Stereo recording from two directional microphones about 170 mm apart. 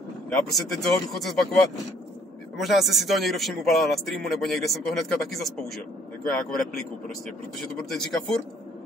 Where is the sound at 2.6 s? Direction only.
Centre (ahead or behind).